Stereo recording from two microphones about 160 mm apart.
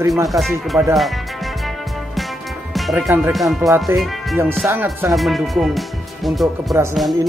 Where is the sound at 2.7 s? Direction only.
Centre (ahead or behind).